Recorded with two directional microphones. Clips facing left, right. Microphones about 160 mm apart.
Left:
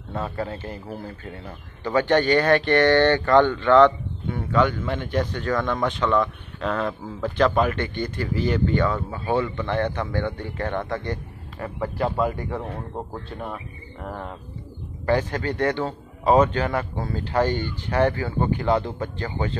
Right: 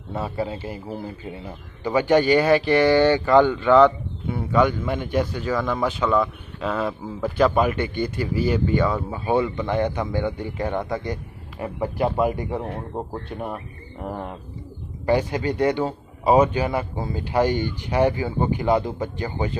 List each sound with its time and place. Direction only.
0.1 s a man's voice: 10° right (ahead or behind)